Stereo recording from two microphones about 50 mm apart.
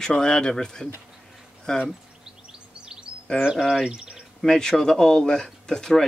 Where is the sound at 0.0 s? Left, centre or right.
Centre.